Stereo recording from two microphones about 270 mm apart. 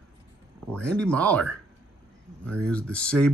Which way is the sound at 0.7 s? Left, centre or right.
Centre.